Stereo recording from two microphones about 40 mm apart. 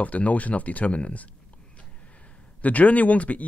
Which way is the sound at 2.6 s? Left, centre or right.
Left.